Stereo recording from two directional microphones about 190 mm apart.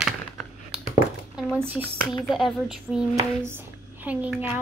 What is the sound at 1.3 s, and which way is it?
Speech, 10° right (ahead or behind).